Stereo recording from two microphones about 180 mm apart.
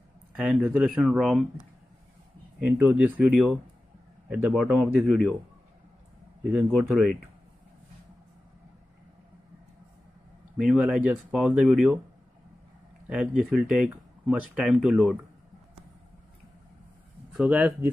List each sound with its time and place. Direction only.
0.4 s speech: 5° right (ahead or behind)
2.6 s speech: 10° right (ahead or behind)
6.5 s speech: 5° right (ahead or behind)
10.6 s speech: 5° right (ahead or behind)
13.1 s speech: 5° right (ahead or behind)
17.4 s speech: 10° right (ahead or behind)